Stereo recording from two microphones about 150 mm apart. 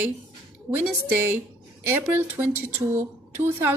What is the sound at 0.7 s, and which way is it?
A woman's voice, 15° right (ahead or behind).